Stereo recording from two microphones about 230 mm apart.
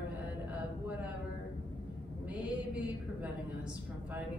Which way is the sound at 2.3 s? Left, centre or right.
Centre.